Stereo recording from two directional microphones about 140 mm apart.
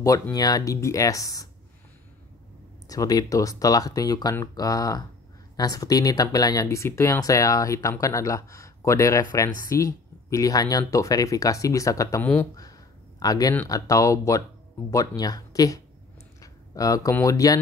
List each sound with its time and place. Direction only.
0.0 s speech: 25° left (ahead or behind)
2.9 s speech: 25° left (ahead or behind)
13.2 s speech: 25° left (ahead or behind)